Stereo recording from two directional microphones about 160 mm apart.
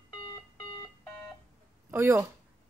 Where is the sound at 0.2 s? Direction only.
25° left (ahead or behind).